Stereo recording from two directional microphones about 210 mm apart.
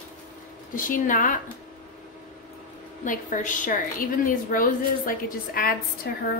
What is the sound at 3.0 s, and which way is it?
A woman's voice, 40° left (ahead or behind).